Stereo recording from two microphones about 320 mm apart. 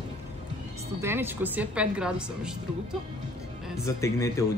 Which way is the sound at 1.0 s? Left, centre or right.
Centre.